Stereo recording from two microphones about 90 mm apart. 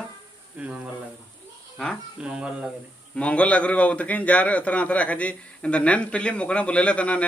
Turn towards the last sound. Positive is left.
turn(degrees=15)  # may be behind; listen again after turning